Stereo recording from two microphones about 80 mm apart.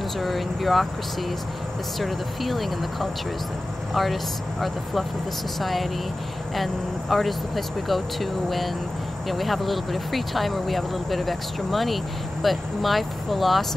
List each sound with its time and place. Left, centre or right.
0.2 s speech: centre
2.0 s speech: centre